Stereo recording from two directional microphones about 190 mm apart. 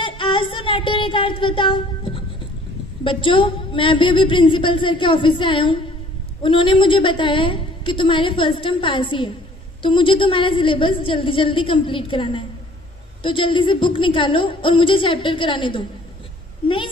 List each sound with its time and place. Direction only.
0.0 s child singing: 25° left (ahead or behind)
3.0 s a woman's voice: 25° left (ahead or behind)